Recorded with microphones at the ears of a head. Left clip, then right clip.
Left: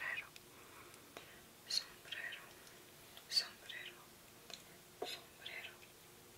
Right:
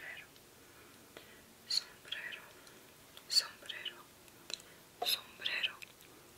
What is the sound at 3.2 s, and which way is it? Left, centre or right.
Whispering, right.